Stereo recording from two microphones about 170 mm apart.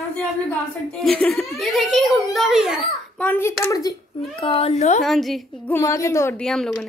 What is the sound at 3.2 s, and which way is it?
A child's voice, 10° left (ahead or behind).